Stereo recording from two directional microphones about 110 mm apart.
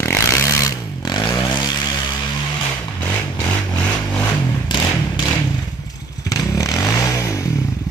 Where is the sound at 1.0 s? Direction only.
40° left (ahead or behind).